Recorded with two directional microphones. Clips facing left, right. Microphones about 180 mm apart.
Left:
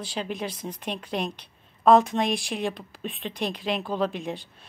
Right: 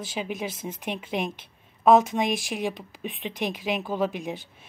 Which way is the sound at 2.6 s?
15° right (ahead or behind).